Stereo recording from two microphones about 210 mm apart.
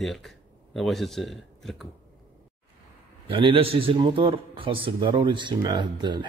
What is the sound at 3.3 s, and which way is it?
A man's voice, 25° right (ahead or behind).